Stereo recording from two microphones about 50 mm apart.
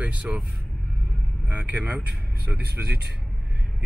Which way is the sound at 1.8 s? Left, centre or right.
Right.